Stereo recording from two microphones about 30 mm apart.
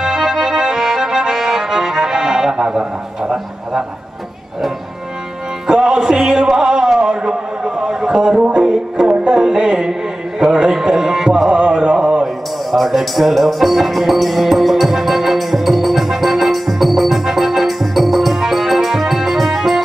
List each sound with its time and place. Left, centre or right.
0.0 s accordion: centre
5.7 s music: right
7.0 s a sound: right
8.2 s speech: right
9.0 s music: right; by 11.5 s centre
11.5 s music: right
12.7 s music: centre